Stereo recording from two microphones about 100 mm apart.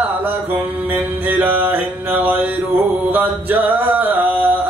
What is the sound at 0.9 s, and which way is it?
Music, 20° right (ahead or behind).